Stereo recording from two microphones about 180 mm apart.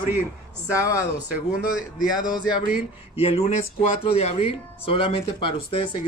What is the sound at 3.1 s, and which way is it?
Speech, 35° left (ahead or behind).